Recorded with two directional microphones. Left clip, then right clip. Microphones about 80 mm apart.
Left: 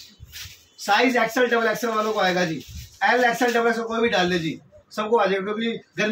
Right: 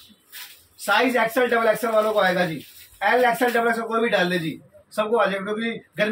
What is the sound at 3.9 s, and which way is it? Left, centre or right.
A man's voice, centre.